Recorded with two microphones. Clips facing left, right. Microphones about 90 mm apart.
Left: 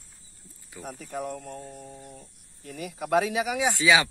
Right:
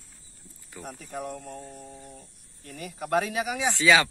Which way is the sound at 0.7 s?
Centre (ahead or behind).